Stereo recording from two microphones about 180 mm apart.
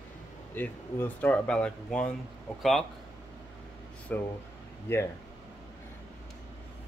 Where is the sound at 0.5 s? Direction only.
10° left (ahead or behind).